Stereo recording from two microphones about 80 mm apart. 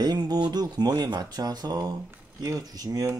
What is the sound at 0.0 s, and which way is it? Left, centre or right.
Speech, right.